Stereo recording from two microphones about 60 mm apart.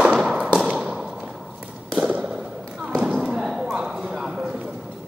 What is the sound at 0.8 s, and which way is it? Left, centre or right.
Fireworks, centre.